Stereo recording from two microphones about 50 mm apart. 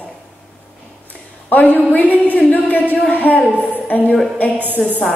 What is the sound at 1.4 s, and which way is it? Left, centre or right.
A woman's voice, left.